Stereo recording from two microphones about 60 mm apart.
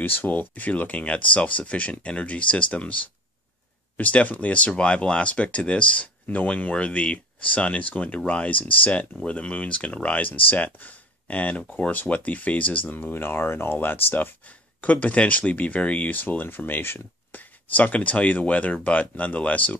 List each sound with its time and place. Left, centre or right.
0.0 s speech: left
14.8 s speech: left